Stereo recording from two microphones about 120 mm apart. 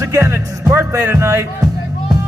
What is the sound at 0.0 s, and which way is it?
Speech, 20° right (ahead or behind).